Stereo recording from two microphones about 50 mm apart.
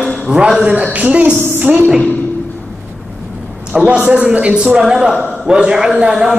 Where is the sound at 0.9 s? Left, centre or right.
Right.